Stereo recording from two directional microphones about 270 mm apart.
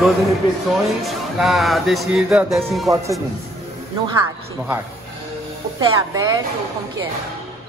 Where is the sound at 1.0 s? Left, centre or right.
Centre.